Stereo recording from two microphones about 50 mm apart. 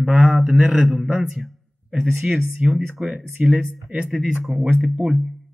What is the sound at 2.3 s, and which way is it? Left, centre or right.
Speech, centre.